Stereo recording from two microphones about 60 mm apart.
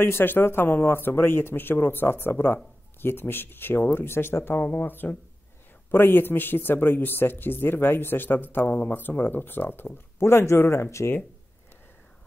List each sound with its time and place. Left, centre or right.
0.0 s speech: left
10.1 s speech: left